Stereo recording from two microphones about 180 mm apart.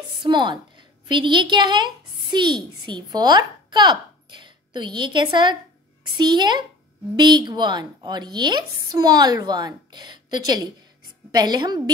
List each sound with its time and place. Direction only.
0.2 s a woman's voice: 25° right (ahead or behind)